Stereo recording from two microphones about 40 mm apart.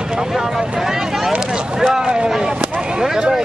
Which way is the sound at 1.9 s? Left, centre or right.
Right.